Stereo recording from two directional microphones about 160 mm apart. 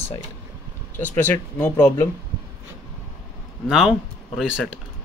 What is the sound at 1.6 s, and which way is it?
Speech, 20° left (ahead or behind).